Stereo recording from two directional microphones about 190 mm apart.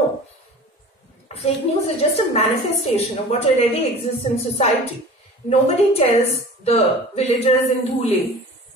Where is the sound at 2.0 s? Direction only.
35° left (ahead or behind).